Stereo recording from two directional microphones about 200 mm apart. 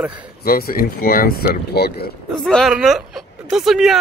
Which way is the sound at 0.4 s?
50° left (ahead or behind).